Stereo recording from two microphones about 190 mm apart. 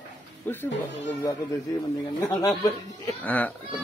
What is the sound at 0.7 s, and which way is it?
Speech, 70° left (ahead or behind).